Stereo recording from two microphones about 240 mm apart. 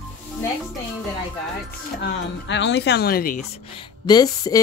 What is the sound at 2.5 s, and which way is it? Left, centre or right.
Speech, left.